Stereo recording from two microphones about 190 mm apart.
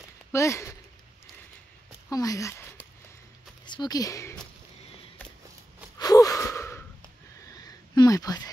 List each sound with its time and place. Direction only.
0.3 s speech: 15° left (ahead or behind)
2.0 s speech: 20° left (ahead or behind)
3.6 s speech: 25° left (ahead or behind)
5.9 s gasp: 20° left (ahead or behind)
7.5 s a sound: 20° left (ahead or behind)